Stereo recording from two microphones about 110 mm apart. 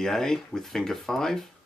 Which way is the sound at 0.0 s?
5° left (ahead or behind).